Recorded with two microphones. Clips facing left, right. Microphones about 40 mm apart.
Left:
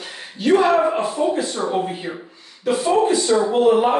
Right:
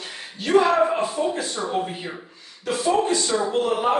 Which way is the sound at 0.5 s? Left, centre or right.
Centre.